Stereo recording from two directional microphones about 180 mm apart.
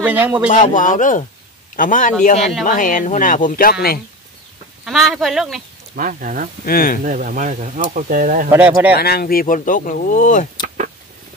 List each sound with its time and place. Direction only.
0.0 s speech: 10° right (ahead or behind)
0.5 s speech: 45° left (ahead or behind)
4.8 s speech: centre (ahead or behind)
5.9 s speech: 50° right (ahead or behind)
6.6 s speech: 50° left (ahead or behind)
7.1 s speech: 45° right (ahead or behind)
8.5 s speech: 10° right (ahead or behind)
8.9 s speech: 60° left (ahead or behind); by 10.4 s 45° left (ahead or behind)